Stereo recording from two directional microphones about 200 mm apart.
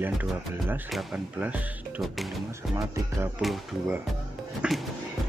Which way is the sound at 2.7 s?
15° right (ahead or behind).